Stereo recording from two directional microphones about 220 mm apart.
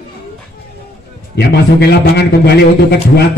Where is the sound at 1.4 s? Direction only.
50° left (ahead or behind).